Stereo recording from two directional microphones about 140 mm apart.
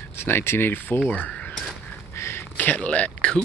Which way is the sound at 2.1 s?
15° left (ahead or behind).